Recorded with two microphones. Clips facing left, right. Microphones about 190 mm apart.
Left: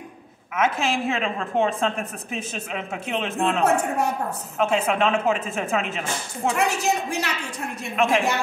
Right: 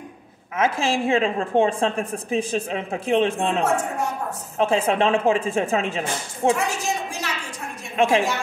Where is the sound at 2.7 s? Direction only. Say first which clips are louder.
Right 5 dB; 35° right (ahead or behind).